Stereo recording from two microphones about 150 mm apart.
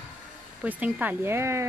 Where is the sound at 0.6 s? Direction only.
10° right (ahead or behind).